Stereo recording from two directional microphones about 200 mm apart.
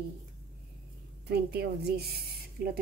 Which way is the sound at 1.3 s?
55° right (ahead or behind).